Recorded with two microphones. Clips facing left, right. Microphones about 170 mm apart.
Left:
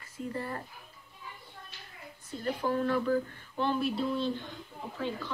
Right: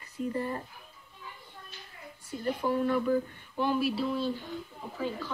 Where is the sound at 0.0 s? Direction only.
15° right (ahead or behind).